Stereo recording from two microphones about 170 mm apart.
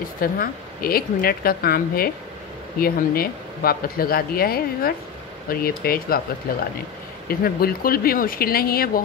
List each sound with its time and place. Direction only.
0.2 s speech: 60° left (ahead or behind)